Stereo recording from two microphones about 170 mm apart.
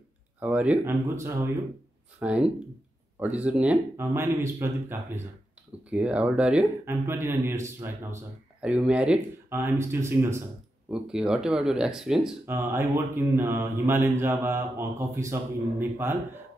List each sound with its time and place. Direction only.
0.4 s a man's voice: 10° right (ahead or behind)
10.9 s speech: 5° right (ahead or behind)
12.4 s a man's voice: 15° right (ahead or behind)